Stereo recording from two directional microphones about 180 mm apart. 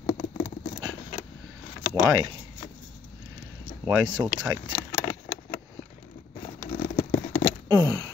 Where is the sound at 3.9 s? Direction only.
20° right (ahead or behind).